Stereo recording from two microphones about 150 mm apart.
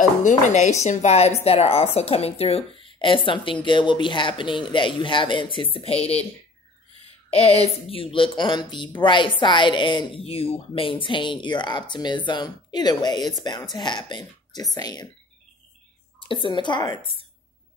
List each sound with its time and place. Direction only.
0.2 s speech: 55° left (ahead or behind)
7.2 s speech: 45° left (ahead or behind); by 15.0 s 25° left (ahead or behind)
16.2 s speech: 35° left (ahead or behind)